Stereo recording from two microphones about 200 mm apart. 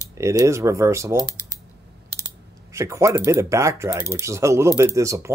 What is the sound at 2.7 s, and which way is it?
Speech, 15° right (ahead or behind).